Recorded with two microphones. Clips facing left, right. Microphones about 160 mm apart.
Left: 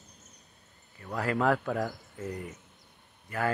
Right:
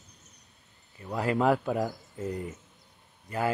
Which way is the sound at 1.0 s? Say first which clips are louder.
Right 2 dB; 20° right (ahead or behind).